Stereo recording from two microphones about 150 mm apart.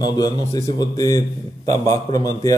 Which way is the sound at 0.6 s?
25° left (ahead or behind).